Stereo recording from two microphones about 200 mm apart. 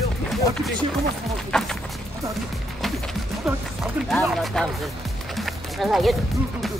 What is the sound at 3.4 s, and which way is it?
Speech, centre (ahead or behind).